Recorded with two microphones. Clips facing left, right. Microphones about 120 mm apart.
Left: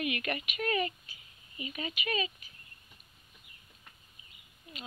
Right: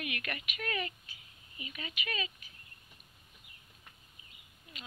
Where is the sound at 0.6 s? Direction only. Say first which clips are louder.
Left 6 dB; 30° left (ahead or behind).